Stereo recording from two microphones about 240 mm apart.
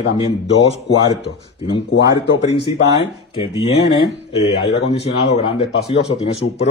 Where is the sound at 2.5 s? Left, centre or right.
Left.